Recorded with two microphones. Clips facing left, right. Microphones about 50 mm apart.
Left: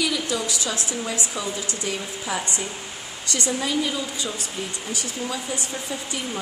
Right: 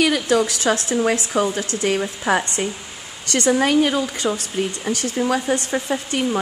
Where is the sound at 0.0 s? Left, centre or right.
Right.